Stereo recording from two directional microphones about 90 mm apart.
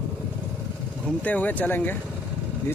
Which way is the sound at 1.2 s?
15° left (ahead or behind).